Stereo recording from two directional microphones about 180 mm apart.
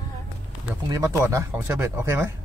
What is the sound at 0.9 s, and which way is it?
Speech, 15° right (ahead or behind).